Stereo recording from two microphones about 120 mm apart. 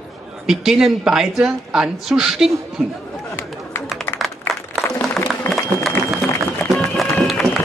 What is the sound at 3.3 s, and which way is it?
Run, 20° left (ahead or behind).